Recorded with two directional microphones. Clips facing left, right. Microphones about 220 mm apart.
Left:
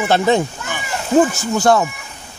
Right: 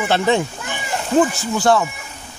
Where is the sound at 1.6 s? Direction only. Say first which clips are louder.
Left 2 dB; 45° left (ahead or behind).